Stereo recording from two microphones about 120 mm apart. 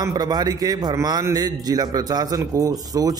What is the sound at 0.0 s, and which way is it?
A man's voice, 35° right (ahead or behind).